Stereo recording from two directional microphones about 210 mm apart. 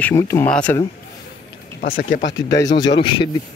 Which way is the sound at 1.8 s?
40° left (ahead or behind).